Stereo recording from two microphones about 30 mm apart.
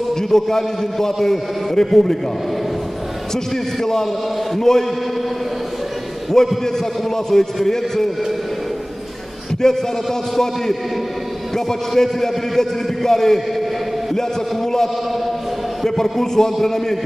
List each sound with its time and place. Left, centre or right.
0.1 s a man's voice: centre
3.8 s a man's voice: centre
6.6 s a man's voice: centre
9.6 s a man's voice: centre
11.5 s a man's voice: centre